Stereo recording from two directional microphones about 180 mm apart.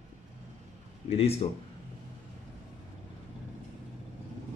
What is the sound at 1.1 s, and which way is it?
Speech, 35° left (ahead or behind).